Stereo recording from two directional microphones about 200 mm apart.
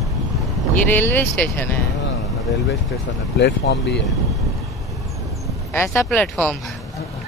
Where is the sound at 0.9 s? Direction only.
10° left (ahead or behind).